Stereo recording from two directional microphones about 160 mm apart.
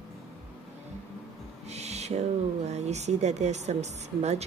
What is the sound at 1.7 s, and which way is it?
Speech, 45° right (ahead or behind).